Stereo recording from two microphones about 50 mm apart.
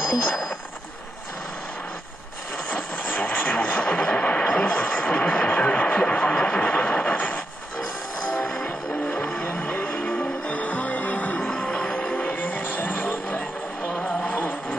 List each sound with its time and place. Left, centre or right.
2.7 s vehicle: left
8.5 s music: centre
9.2 s vehicle: centre
9.5 s music: left
11.4 s music: centre; by 13.4 s left
14.0 s a sound: left